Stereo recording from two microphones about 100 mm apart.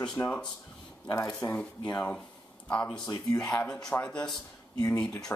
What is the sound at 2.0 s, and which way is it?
Speech, 10° left (ahead or behind).